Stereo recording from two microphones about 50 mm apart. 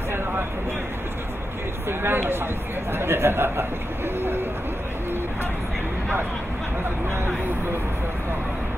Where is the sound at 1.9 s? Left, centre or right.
Right.